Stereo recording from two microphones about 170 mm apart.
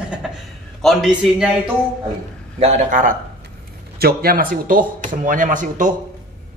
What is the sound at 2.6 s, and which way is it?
Speech, 45° right (ahead or behind).